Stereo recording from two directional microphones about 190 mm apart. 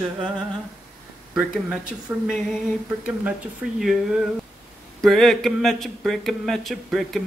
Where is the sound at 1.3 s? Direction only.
Centre (ahead or behind).